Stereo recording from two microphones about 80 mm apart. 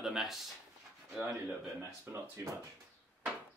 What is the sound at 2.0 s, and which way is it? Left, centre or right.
Speech, right.